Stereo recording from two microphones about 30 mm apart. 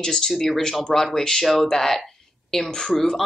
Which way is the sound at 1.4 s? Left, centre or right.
Centre.